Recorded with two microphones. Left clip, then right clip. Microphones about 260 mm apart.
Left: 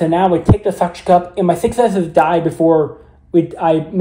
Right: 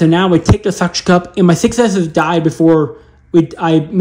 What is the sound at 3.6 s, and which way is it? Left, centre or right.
Speech, right.